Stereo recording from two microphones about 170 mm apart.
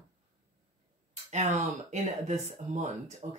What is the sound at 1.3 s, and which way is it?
Speech, 40° right (ahead or behind).